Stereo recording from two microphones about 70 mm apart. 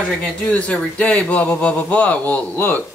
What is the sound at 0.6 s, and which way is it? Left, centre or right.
Speech, centre.